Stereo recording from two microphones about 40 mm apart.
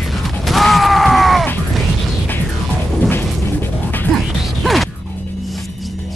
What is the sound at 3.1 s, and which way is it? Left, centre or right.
Music, left.